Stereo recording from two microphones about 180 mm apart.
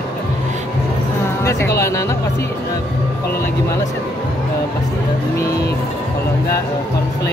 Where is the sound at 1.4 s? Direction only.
15° left (ahead or behind).